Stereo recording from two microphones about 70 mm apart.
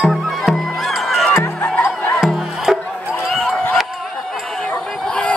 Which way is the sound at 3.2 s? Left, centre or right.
Centre.